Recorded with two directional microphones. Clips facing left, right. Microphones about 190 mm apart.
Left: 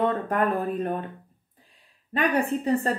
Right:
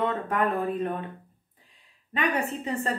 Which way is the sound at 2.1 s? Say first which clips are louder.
Left 4 dB; 35° left (ahead or behind).